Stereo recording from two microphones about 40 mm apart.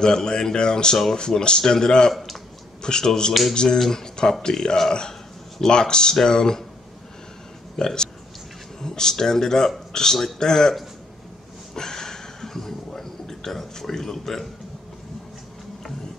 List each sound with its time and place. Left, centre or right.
0.0 s speech: centre
5.7 s speech: left
7.7 s speech: centre
11.7 s a sound: centre